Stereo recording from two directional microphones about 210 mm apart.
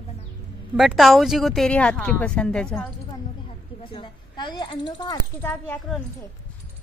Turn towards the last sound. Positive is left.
turn(degrees=5)  # may be behind; listen again after turning